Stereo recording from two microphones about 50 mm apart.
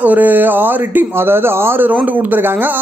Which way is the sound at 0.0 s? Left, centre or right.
Right.